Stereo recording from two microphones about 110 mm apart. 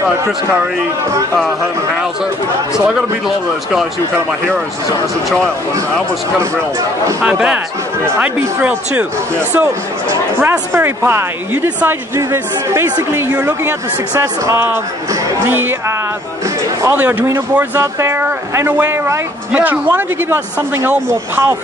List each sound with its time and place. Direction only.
7.2 s a man's voice: 10° right (ahead or behind)
10.7 s speech: 20° right (ahead or behind)
16.9 s a man's voice: 15° right (ahead or behind)